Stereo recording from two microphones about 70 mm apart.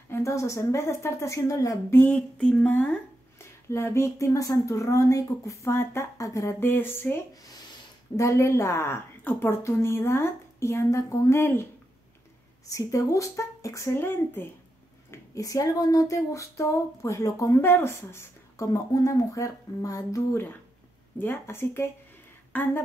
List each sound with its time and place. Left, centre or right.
0.1 s speech: left
1.9 s speech: left
3.3 s speech: left
5.7 s a woman's voice: left
6.1 s speech: left
6.6 s a woman's voice: left
8.2 s a woman's voice: left
12.6 s speech: left
13.9 s a woman's voice: left
15.0 s speech: left
17.6 s speech: left
18.7 s speech: left
21.2 s a woman's voice: left